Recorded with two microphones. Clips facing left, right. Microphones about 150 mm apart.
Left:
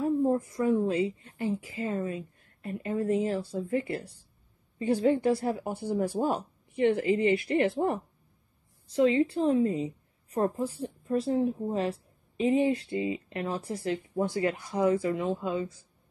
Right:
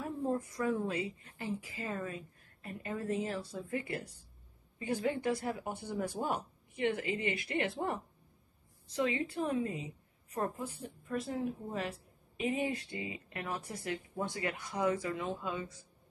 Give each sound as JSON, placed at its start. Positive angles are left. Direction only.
{"t": 0.5, "sound": "a woman's voice", "side_deg": 25}